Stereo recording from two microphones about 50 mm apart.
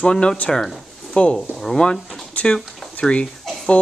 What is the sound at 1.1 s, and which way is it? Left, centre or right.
Speech, left.